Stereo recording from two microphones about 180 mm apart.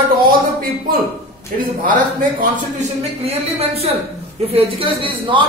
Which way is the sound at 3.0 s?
35° right (ahead or behind).